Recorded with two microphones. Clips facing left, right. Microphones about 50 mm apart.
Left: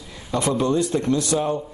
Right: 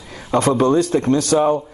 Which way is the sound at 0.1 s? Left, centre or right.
Right.